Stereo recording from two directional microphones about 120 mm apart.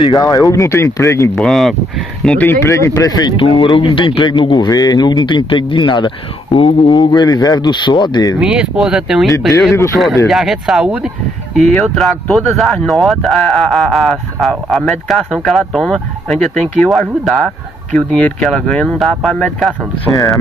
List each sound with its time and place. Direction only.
0.1 s speech: 30° left (ahead or behind)
1.3 s speech: 5° left (ahead or behind)
2.3 s speech: 20° left (ahead or behind); by 8.4 s 35° left (ahead or behind)
8.4 s speech: 10° right (ahead or behind)
11.7 s speech: centre (ahead or behind)